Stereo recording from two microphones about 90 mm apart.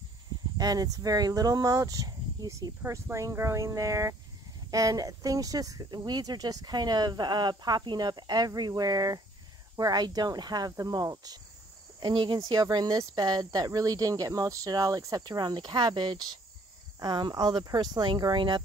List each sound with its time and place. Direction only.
0.6 s speech: 45° right (ahead or behind)
12.0 s cricket: 60° right (ahead or behind)
12.4 s speech: 50° right (ahead or behind)
15.2 s cricket: 55° right (ahead or behind)
17.0 s speech: 50° right (ahead or behind)